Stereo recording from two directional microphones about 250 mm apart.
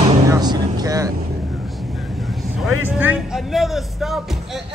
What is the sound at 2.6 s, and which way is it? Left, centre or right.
A man's voice, centre.